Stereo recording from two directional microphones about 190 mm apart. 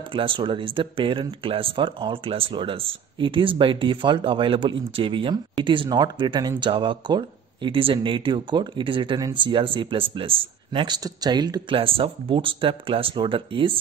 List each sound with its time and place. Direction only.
0.1 s speech: 25° right (ahead or behind)